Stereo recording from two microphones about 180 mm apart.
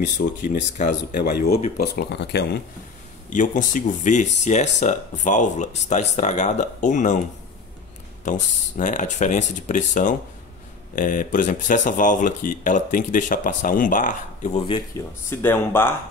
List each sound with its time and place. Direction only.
0.6 s speech: 45° left (ahead or behind)
1.1 s speech: 60° left (ahead or behind)
2.0 s speech: 70° left (ahead or behind)
3.3 s speech: 45° left (ahead or behind)
15.2 s speech: 10° left (ahead or behind)